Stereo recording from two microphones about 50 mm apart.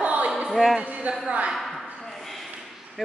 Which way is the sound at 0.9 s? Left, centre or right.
Right.